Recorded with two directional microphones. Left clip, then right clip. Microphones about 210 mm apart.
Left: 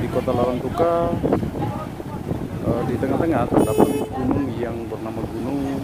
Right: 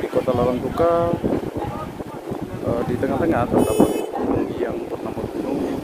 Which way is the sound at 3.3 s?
Centre (ahead or behind).